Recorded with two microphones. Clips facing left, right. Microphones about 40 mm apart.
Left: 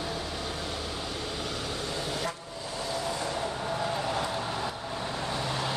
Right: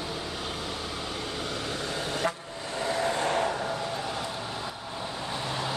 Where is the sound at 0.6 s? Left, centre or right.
Centre.